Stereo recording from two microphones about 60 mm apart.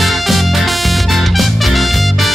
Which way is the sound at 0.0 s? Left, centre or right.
Centre.